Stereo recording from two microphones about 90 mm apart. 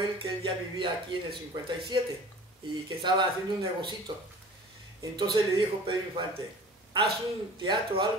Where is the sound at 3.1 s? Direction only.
60° right (ahead or behind).